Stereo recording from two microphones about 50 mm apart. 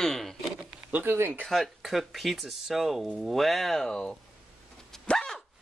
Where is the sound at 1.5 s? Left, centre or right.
Centre.